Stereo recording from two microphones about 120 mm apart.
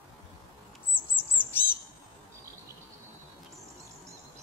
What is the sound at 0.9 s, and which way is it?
Squawk, 15° left (ahead or behind).